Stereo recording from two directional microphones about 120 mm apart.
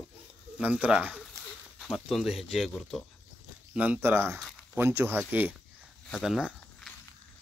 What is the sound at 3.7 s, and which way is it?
Speech, 10° right (ahead or behind).